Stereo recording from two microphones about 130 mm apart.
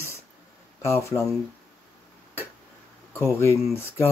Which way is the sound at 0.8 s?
20° left (ahead or behind).